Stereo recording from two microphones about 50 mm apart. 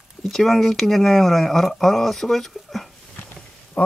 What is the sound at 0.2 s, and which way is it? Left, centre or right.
Speech, centre.